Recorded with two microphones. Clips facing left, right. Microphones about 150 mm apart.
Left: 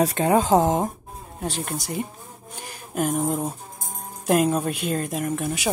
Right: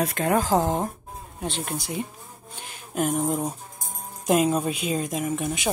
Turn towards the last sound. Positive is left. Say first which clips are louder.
# left 1 dB
turn(degrees=0)  # may be behind; listen again after turning